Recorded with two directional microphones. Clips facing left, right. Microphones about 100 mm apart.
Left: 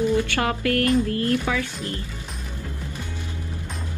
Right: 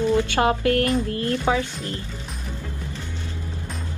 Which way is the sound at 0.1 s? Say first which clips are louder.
Right 3 dB; 20° right (ahead or behind).